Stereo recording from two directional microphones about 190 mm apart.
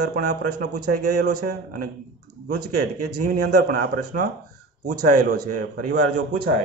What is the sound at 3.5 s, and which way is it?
A man's voice, 50° right (ahead or behind).